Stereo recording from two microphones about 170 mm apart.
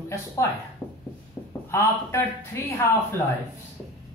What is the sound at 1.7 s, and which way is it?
A woman's voice, 15° left (ahead or behind).